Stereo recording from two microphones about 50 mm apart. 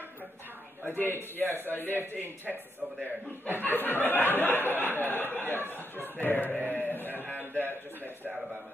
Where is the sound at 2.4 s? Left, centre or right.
Right.